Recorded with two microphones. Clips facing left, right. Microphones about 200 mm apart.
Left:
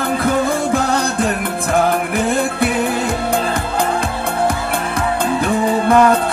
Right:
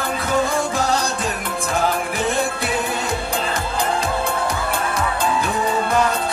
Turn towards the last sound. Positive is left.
turn(degrees=60)  # may be behind; listen again after turning